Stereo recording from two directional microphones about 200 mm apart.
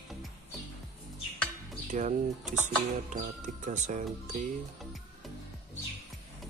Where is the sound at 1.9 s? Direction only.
40° right (ahead or behind).